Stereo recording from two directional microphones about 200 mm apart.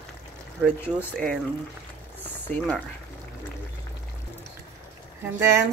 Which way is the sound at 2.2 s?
10° left (ahead or behind).